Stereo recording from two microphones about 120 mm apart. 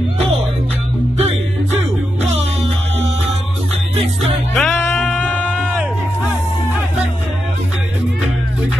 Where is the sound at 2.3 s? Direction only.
60° right (ahead or behind).